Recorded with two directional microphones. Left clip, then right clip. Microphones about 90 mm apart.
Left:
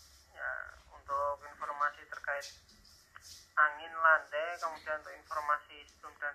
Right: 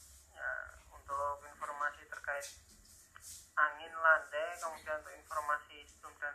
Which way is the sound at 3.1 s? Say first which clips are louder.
Left 4 dB; 25° left (ahead or behind).